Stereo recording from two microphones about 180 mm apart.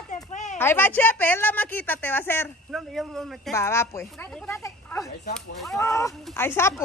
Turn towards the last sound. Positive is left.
turn(degrees=10)  # may be behind; listen again after turning